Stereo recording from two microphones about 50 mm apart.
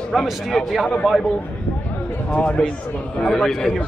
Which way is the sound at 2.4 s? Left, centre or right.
Left.